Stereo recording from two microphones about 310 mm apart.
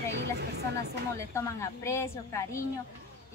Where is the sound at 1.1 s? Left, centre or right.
Centre.